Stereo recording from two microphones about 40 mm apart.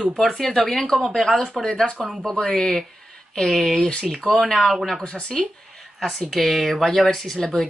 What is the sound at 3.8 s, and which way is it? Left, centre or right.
Speech, left.